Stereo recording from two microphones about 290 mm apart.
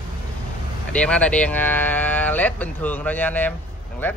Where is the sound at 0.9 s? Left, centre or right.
Centre.